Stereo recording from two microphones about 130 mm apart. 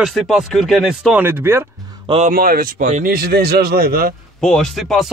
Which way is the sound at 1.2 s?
15° right (ahead or behind).